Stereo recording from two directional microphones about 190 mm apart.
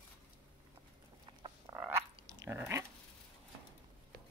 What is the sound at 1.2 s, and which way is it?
Frog, 25° right (ahead or behind).